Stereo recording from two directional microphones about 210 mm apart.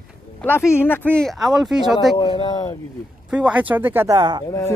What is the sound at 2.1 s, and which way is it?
Speech, 20° left (ahead or behind).